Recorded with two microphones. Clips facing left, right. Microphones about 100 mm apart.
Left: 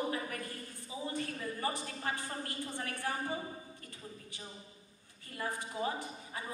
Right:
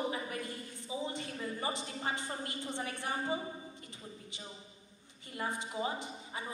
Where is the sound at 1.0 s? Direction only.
20° right (ahead or behind).